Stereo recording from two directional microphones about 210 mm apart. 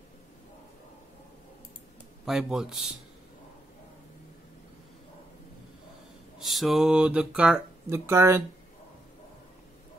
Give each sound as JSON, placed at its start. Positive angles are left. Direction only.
{"t": 2.2, "sound": "speech", "side_deg": -5}
{"t": 6.4, "sound": "speech", "side_deg": 0}